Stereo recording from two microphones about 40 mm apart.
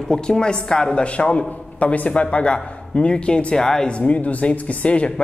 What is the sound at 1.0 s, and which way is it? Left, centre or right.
Speech, left.